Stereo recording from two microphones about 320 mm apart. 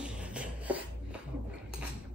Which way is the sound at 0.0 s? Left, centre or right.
Centre.